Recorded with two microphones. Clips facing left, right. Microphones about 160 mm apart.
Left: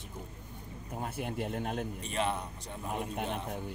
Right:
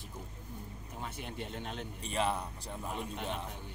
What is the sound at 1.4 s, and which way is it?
Speech, 50° left (ahead or behind).